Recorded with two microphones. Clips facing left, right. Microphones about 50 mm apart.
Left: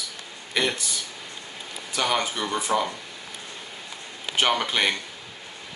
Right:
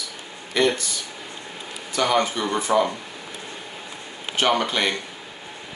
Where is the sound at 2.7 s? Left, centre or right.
Centre.